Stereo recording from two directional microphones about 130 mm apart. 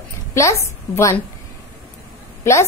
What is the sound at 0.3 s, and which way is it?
Speech, 20° left (ahead or behind).